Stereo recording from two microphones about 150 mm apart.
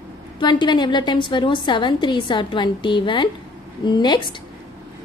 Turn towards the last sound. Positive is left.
turn(degrees=30)  # may be behind; listen again after turning